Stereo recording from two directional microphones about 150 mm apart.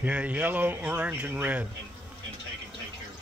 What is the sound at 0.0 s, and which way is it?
Speech, 10° right (ahead or behind).